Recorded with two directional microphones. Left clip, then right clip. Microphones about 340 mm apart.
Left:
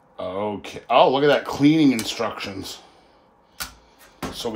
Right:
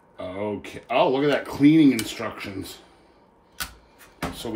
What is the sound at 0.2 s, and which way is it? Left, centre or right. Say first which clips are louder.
Speech: left 3 dB; centre.